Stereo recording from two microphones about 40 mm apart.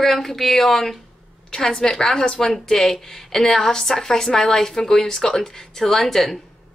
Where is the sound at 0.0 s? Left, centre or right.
Centre.